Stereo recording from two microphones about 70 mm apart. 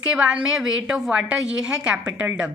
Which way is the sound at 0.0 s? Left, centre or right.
Centre.